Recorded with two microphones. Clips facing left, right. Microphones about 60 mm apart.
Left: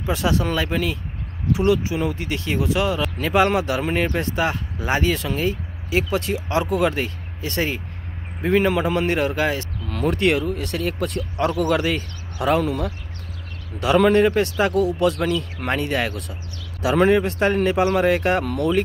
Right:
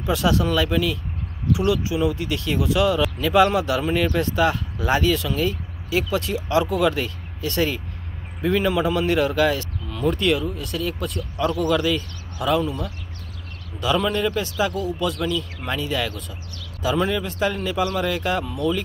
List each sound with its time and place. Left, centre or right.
0.0 s speech: left
9.8 s speech: left
13.7 s speech: left
14.1 s speech: left
14.8 s speech: left
15.0 s speech: left
18.4 s speech: left